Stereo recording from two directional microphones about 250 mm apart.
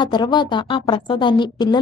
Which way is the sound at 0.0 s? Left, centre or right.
Centre.